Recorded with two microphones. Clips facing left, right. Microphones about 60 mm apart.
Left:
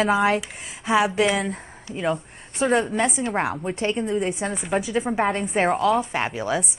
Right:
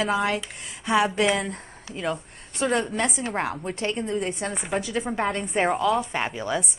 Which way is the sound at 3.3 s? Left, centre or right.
Centre.